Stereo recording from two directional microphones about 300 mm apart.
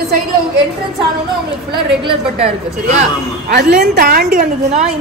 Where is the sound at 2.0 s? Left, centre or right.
Centre.